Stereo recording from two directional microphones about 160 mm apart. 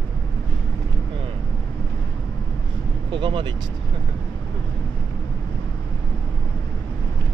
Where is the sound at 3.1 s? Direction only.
30° right (ahead or behind).